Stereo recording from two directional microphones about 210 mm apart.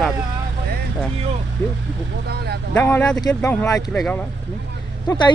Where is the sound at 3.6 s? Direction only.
5° left (ahead or behind).